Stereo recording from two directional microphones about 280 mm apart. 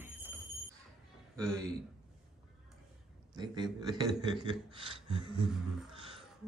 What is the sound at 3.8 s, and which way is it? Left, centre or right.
Speech, centre.